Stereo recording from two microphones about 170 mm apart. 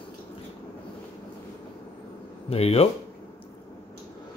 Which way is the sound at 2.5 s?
35° left (ahead or behind).